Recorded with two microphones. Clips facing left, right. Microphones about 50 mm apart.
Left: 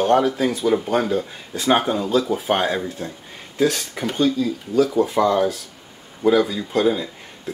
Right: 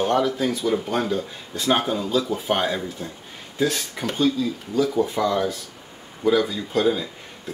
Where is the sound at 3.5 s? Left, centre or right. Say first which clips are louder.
Left 3 dB; left.